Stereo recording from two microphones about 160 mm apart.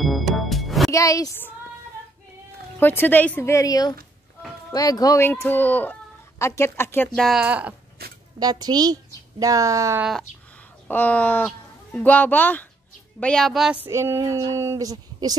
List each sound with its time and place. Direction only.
0.0 s music: centre (ahead or behind)
0.9 s speech: 20° left (ahead or behind)
2.8 s speech: 10° left (ahead or behind)
7.2 s a woman's voice: centre (ahead or behind)
8.0 s a sound: 80° right
8.4 s speech: 25° right (ahead or behind)
10.9 s a woman's voice: 10° left (ahead or behind)
13.8 s speech: 15° right (ahead or behind)